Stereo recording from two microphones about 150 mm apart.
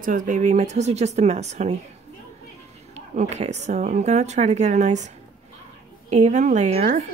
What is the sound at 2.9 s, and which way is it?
Speech, 50° right (ahead or behind).